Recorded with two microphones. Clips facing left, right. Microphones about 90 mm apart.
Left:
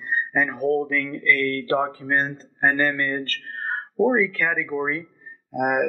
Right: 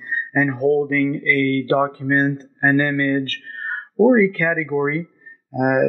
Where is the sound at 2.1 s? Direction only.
50° right (ahead or behind).